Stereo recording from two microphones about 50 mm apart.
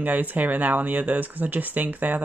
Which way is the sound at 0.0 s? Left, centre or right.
Right.